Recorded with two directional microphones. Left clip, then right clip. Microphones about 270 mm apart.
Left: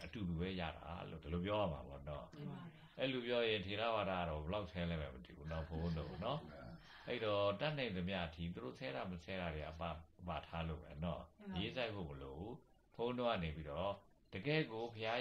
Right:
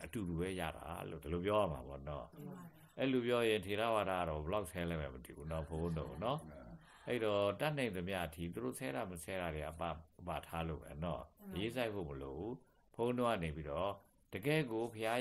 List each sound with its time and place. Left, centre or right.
0.0 s speech: right
12.9 s speech: right